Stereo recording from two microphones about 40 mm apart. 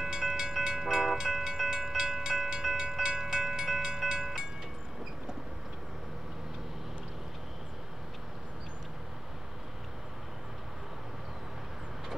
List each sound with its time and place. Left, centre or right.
0.0 s train: centre